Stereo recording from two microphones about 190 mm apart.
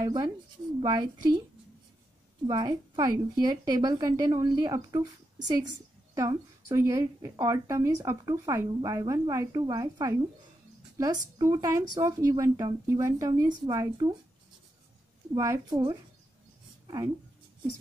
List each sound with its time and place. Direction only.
0.0 s a woman's voice: 20° right (ahead or behind)
2.4 s a woman's voice: 20° right (ahead or behind)
11.3 s a woman's voice: 20° right (ahead or behind)
15.3 s speech: 15° right (ahead or behind)
16.8 s a sound: 15° right (ahead or behind)